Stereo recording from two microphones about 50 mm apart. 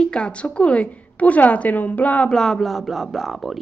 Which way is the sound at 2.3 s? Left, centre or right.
Centre.